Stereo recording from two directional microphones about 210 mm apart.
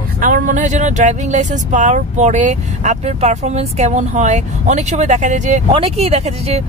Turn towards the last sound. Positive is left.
turn(degrees=-30)  # may be behind; listen again after turning